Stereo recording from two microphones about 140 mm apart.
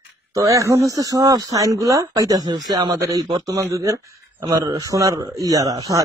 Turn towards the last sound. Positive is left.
turn(degrees=-25)  # may be behind; listen again after turning